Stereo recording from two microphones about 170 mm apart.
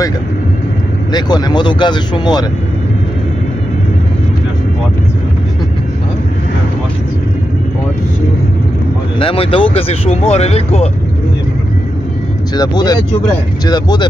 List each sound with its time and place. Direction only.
1.1 s speech: 25° left (ahead or behind)
9.2 s speech: 30° left (ahead or behind)
12.5 s speech: 25° left (ahead or behind)